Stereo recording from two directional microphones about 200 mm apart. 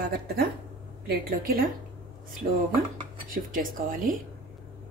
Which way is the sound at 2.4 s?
35° right (ahead or behind).